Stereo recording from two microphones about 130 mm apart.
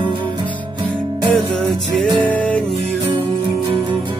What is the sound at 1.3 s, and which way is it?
Music, 5° left (ahead or behind).